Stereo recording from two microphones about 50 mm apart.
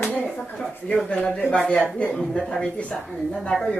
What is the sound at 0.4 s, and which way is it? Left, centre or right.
Speech, centre.